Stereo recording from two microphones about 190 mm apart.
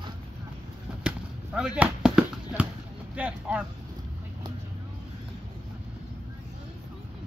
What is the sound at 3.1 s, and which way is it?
Speech, 5° right (ahead or behind).